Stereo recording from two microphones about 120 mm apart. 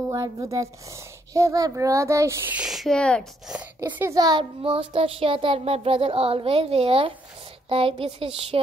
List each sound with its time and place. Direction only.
0.1 s speech: 25° right (ahead or behind)
2.5 s speech: 5° right (ahead or behind)
3.4 s speech: 10° right (ahead or behind)
4.0 s a child's voice: 30° right (ahead or behind); by 8.3 s 50° right (ahead or behind)